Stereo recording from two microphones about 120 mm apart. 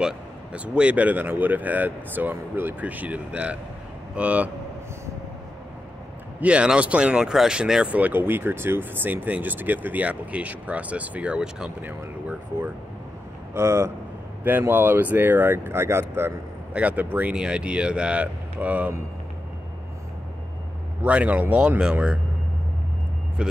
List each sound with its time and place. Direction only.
0.0 s speech: 10° right (ahead or behind)
6.4 s speech: 10° right (ahead or behind)
21.0 s speech: 15° right (ahead or behind)
23.4 s speech: 10° right (ahead or behind)